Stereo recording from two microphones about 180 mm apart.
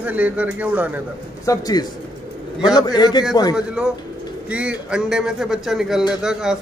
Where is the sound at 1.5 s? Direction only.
20° left (ahead or behind).